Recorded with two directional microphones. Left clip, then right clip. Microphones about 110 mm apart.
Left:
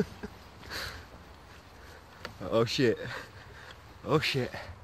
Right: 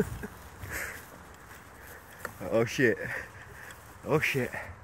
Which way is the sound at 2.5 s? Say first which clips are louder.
Right 1 dB; 45° left (ahead or behind).